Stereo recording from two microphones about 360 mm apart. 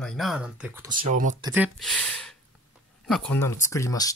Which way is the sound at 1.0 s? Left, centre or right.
Centre.